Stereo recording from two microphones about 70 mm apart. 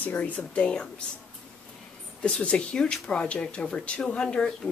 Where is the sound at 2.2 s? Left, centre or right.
Centre.